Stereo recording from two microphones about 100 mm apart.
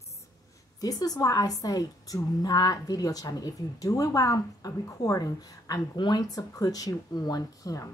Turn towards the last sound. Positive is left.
turn(degrees=35)  # may be behind; listen again after turning